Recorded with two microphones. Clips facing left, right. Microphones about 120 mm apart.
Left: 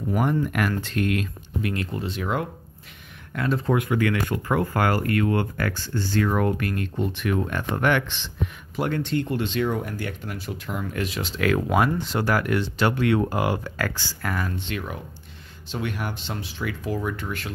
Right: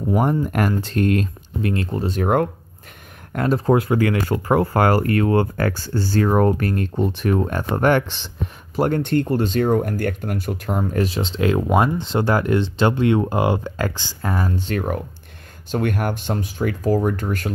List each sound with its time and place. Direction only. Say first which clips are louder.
0.1 s speech: right 4 dB; 35° right (ahead or behind); by 2.5 s 55° right (ahead or behind)
3.3 s speech: right 6 dB; 40° right (ahead or behind)